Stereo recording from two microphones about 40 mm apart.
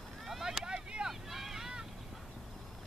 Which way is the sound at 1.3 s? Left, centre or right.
Centre.